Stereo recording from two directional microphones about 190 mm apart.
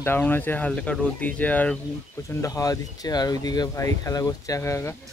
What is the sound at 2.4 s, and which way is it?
Speech, 20° left (ahead or behind).